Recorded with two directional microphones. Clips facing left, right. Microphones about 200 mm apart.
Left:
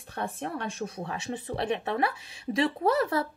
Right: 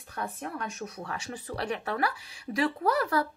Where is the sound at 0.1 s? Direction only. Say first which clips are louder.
Left 3 dB; 30° left (ahead or behind).